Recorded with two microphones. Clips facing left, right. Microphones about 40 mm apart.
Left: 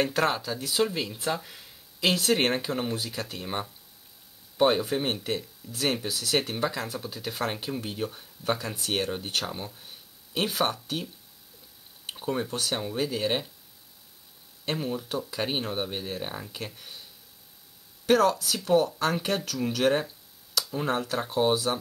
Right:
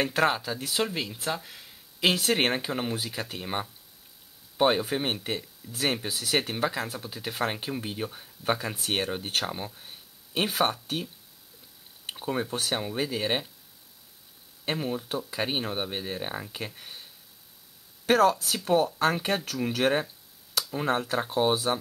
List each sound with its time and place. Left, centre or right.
0.0 s speech: centre
12.1 s speech: centre
14.6 s speech: centre
18.0 s speech: centre